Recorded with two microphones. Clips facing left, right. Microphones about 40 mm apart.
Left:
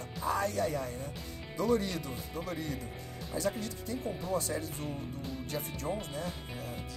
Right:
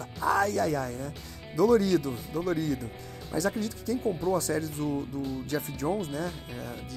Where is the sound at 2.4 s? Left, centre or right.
Right.